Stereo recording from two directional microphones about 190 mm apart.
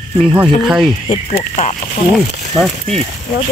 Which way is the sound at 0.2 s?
5° right (ahead or behind).